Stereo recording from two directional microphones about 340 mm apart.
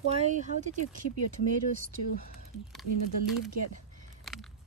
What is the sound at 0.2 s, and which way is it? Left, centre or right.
Speech, right.